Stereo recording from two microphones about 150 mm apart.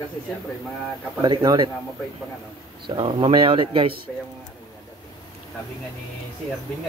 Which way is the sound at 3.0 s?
35° right (ahead or behind).